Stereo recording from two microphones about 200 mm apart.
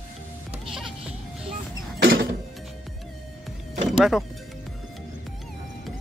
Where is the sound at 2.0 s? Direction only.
65° right (ahead or behind).